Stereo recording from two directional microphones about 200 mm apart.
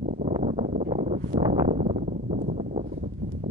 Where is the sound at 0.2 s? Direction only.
30° right (ahead or behind).